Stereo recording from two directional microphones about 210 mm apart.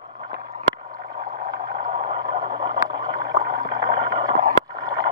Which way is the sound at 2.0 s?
25° right (ahead or behind).